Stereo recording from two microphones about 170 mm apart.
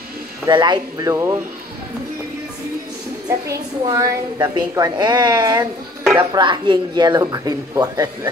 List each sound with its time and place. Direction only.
0.5 s a woman's voice: 25° right (ahead or behind)
3.3 s a woman's voice: 20° right (ahead or behind)